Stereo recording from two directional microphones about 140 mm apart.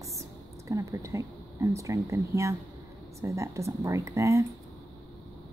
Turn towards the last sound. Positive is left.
turn(degrees=-20)  # may be behind; listen again after turning